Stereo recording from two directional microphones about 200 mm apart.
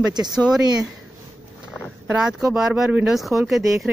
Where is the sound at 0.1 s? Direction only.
20° right (ahead or behind).